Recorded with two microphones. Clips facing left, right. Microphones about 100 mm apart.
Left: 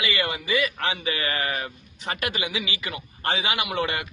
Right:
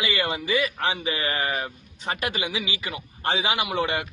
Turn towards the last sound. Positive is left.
turn(degrees=-25)  # may be behind; listen again after turning